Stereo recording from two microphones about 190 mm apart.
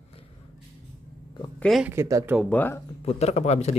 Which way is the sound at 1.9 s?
15° right (ahead or behind).